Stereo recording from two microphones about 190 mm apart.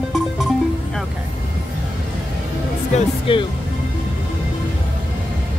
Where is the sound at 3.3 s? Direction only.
25° left (ahead or behind).